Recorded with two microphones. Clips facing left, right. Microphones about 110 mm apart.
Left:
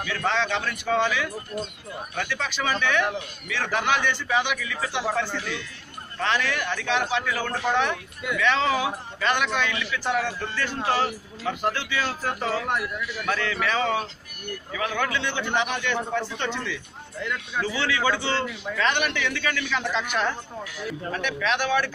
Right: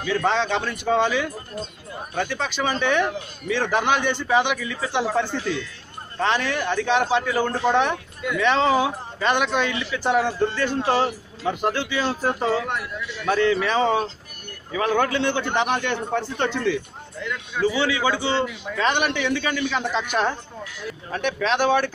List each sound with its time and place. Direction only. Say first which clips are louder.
0.0 s a man's voice: right 4 dB; 30° right (ahead or behind); by 16.8 s 45° right (ahead or behind)
17.6 s a man's voice: right 4 dB; 15° right (ahead or behind); by 21.9 s 35° right (ahead or behind)